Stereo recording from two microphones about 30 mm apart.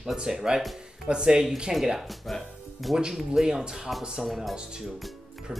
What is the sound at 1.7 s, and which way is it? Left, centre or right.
Speech, centre.